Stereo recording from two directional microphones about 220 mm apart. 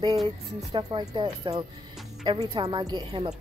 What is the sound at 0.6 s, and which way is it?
A woman's voice, 20° right (ahead or behind).